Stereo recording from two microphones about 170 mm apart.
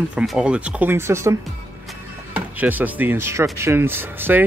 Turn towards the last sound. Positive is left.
turn(degrees=-10)  # may be behind; listen again after turning